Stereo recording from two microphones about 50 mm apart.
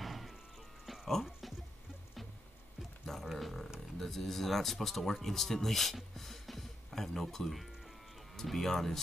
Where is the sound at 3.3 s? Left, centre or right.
Centre.